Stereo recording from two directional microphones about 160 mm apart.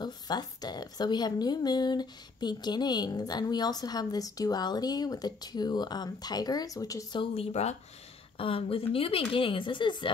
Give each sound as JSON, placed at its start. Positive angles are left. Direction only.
{"t": 0.0, "sound": "a woman's voice", "side_deg": 25}